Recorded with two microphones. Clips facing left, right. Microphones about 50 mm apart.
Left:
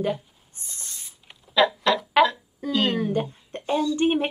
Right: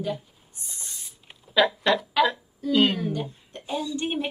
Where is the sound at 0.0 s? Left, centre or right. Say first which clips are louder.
Left 4 dB; left.